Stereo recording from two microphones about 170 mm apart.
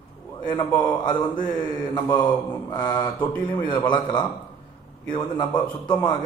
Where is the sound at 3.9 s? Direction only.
25° left (ahead or behind).